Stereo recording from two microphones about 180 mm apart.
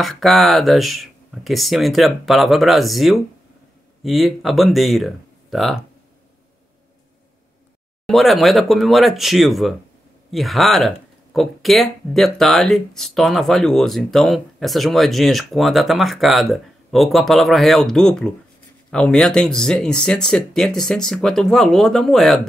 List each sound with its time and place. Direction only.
0.0 s speech: centre (ahead or behind)
8.1 s speech: centre (ahead or behind)